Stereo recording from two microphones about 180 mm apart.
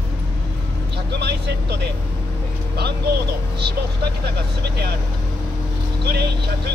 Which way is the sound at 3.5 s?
65° right (ahead or behind).